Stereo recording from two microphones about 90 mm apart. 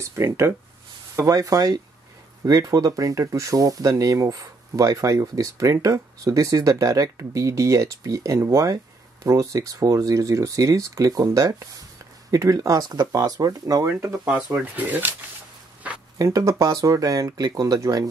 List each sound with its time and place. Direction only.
0.0 s speech: 30° right (ahead or behind)
14.2 s speech: 15° right (ahead or behind)
16.2 s speech: 35° right (ahead or behind)